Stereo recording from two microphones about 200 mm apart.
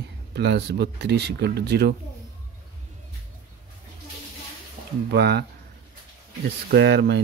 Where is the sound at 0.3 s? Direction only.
55° right (ahead or behind).